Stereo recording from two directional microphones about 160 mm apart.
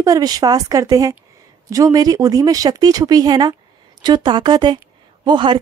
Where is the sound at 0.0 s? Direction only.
25° right (ahead or behind).